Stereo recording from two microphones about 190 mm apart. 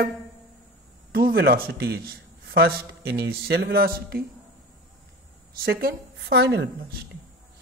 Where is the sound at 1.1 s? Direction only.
55° right (ahead or behind).